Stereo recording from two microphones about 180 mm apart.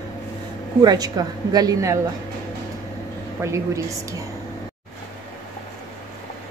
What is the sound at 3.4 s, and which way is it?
Speech, 15° right (ahead or behind).